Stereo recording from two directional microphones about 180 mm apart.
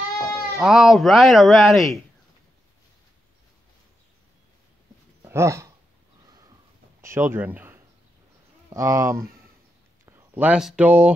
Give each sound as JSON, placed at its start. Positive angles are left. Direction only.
{"t": 0.2, "sound": "speech", "side_deg": 0}
{"t": 5.2, "sound": "dog", "side_deg": -15}
{"t": 7.0, "sound": "a sound", "side_deg": -15}
{"t": 8.6, "sound": "speech", "side_deg": -15}